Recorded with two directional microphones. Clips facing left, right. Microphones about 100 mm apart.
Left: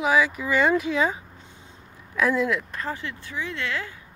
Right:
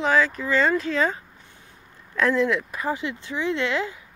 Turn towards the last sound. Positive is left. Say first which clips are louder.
# right 6 dB
turn(degrees=-20)  # may be behind; listen again after turning